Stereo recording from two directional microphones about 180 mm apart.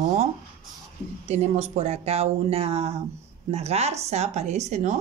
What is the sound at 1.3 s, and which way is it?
A woman's voice, 35° right (ahead or behind).